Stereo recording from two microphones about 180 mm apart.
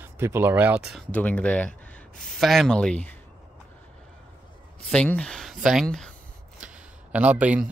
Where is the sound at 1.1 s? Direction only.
10° left (ahead or behind).